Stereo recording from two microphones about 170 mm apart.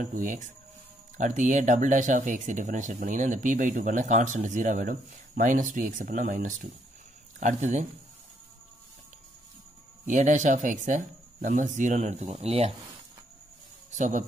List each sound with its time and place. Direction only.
0.0 s speech: 50° right (ahead or behind)
10.0 s speech: 45° right (ahead or behind)
13.9 s speech: 45° right (ahead or behind)